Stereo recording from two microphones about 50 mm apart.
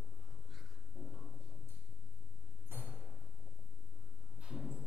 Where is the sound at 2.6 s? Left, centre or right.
Right.